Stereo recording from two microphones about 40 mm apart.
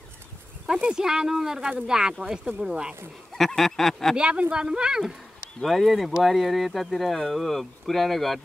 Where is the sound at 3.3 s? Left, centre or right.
Centre.